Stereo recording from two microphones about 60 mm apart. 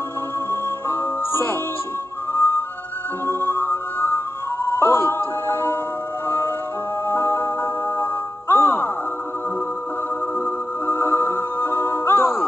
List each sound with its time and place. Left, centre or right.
0.5 s music: left
8.5 s music: left
10.4 s music: left